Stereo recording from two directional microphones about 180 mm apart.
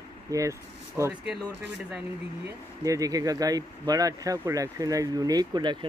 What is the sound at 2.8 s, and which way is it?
A man's voice, 20° right (ahead or behind).